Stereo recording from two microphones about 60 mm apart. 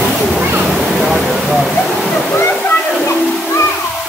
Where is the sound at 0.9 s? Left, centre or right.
Centre.